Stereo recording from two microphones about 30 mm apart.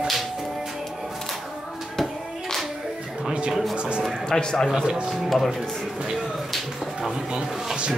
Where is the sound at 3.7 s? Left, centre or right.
Right.